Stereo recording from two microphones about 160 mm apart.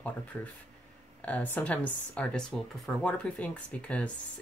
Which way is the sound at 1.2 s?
10° left (ahead or behind).